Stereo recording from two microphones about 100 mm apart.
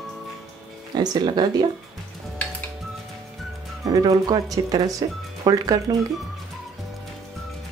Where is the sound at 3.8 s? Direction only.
40° right (ahead or behind).